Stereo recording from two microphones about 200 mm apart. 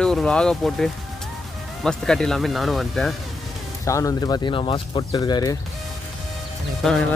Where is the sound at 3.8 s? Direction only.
15° left (ahead or behind).